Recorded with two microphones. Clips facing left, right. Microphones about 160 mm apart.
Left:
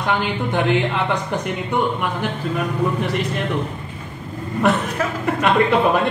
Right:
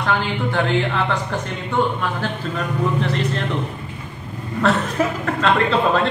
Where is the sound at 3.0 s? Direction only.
10° left (ahead or behind).